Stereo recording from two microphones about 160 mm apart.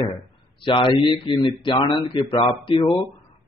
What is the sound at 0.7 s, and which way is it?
A man's voice, 30° left (ahead or behind).